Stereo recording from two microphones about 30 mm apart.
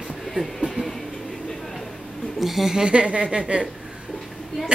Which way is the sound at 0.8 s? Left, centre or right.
Right.